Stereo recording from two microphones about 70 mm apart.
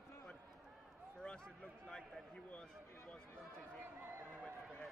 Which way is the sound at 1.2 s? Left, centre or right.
Centre.